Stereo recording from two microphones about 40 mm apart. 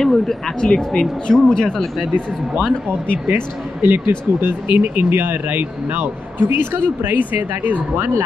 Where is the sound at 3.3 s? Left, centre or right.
Right.